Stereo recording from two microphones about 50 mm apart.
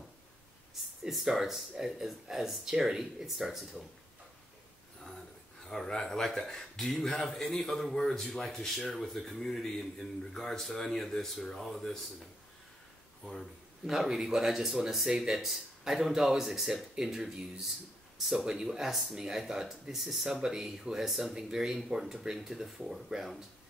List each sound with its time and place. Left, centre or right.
1.0 s speech: centre
5.7 s a man's voice: centre
13.8 s speech: centre